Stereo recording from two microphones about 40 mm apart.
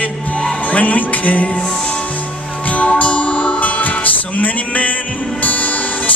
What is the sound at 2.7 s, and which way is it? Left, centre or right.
Music, left.